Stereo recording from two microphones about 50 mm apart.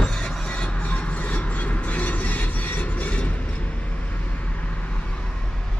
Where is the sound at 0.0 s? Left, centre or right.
Centre.